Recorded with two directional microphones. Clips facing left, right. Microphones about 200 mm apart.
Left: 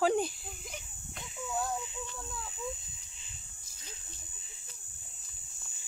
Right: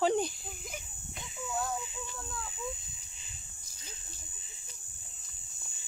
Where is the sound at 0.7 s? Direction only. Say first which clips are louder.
Right 1 dB; centre (ahead or behind).